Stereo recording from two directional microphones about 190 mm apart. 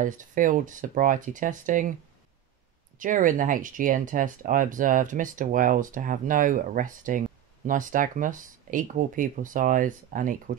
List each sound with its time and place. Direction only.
0.0 s speech: 45° right (ahead or behind)
3.0 s speech: 45° right (ahead or behind)